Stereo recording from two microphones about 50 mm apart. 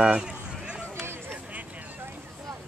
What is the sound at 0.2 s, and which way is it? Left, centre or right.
Run, centre.